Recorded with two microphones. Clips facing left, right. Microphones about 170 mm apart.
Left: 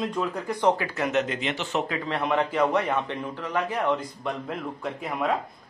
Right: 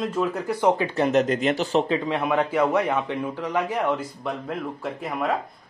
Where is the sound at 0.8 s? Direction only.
25° right (ahead or behind).